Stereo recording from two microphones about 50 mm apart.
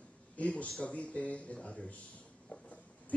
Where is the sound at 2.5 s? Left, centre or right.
Left.